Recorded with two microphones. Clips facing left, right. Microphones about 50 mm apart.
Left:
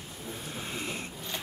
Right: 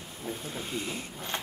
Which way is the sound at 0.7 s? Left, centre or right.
Left.